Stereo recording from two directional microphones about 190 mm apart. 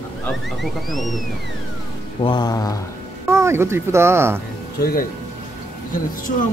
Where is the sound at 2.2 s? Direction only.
20° left (ahead or behind).